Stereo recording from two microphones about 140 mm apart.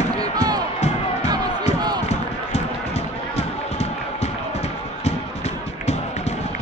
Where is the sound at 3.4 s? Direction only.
50° left (ahead or behind).